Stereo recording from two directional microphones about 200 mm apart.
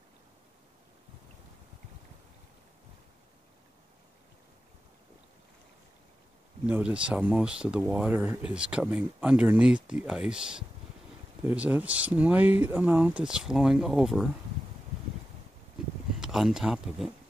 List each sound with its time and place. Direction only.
6.6 s speech: 5° right (ahead or behind)
16.2 s speech: centre (ahead or behind)